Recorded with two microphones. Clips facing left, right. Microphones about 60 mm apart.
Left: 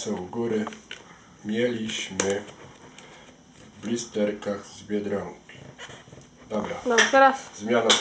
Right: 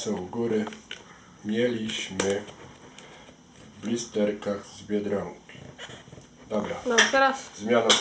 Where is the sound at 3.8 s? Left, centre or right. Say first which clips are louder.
Even; centre.